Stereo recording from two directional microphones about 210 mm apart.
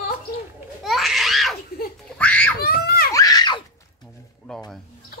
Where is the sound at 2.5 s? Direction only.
45° left (ahead or behind).